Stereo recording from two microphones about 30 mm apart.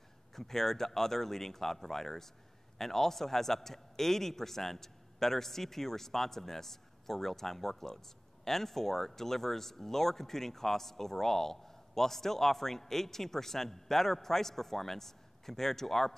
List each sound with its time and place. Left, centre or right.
0.3 s speech: centre